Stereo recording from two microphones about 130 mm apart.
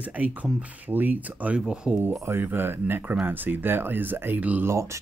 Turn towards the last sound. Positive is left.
turn(degrees=-20)  # may be behind; listen again after turning